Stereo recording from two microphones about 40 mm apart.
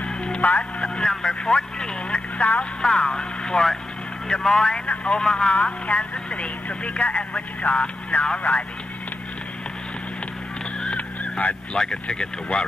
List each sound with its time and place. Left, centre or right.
0.0 s music: left
0.4 s speech: left
0.7 s vehicle: left
2.8 s speech: centre
10.9 s honk: left
11.7 s speech: centre